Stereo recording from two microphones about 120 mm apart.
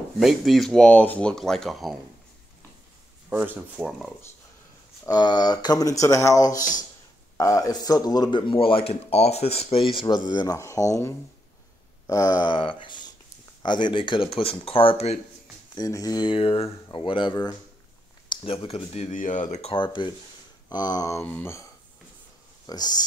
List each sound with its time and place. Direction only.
0.2 s speech: centre (ahead or behind)
3.3 s speech: 15° right (ahead or behind)
5.0 s speech: 35° left (ahead or behind); by 15.1 s 55° left (ahead or behind)
15.7 s speech: 30° left (ahead or behind)
16.3 s speech: 55° left (ahead or behind); by 19.7 s 80° left
19.7 s speech: 40° left (ahead or behind)
21.2 s speech: 15° left (ahead or behind)
22.7 s speech: 35° left (ahead or behind)